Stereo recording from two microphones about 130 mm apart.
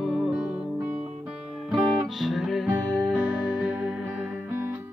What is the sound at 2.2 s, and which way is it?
Music, centre (ahead or behind).